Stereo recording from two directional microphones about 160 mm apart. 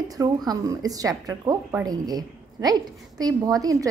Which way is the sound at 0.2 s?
25° right (ahead or behind).